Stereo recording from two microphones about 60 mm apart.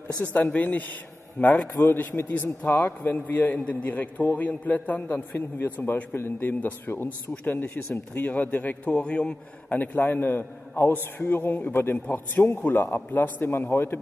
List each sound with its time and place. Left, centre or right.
0.2 s a man's voice: left